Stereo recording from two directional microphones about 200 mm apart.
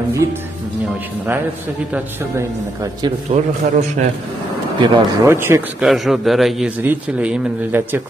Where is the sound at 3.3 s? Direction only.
40° right (ahead or behind).